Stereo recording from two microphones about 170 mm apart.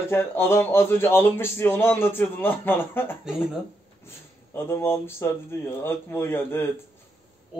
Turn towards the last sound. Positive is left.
turn(degrees=15)  # may be behind; listen again after turning